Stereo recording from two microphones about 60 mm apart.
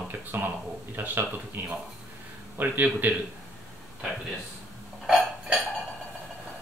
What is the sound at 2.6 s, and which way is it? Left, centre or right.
Speech, right.